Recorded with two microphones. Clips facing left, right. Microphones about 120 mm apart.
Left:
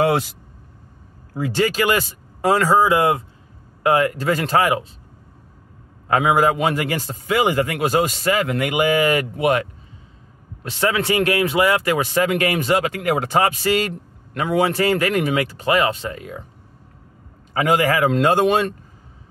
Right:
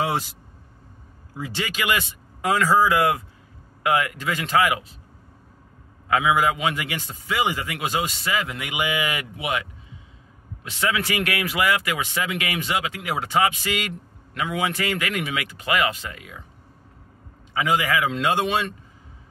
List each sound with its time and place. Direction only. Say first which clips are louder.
0.0 s vehicle: left 7 dB; 65° left (ahead or behind)
1.3 s speech: left 10 dB; 50° left (ahead or behind); by 4.8 s 35° left (ahead or behind)
6.0 s a man's voice: left 4 dB; 40° left (ahead or behind)
17.6 s a man's voice: left 5 dB; 45° left (ahead or behind)